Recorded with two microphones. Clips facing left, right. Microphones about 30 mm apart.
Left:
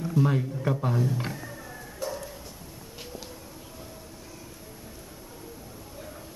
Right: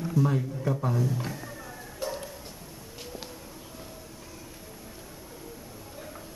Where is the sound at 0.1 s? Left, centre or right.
Left.